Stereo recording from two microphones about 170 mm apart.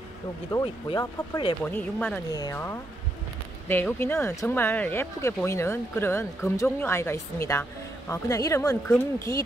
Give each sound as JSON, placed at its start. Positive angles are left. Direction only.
{"t": 0.5, "sound": "speech", "side_deg": 25}
{"t": 1.6, "sound": "speech", "side_deg": 10}